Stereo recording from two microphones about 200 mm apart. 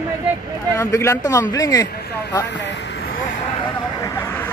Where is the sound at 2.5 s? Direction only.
60° left (ahead or behind).